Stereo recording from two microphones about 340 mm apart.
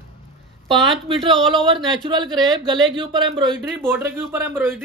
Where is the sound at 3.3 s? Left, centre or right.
Centre.